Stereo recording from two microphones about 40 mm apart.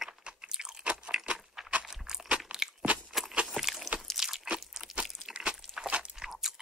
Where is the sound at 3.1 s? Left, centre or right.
Centre.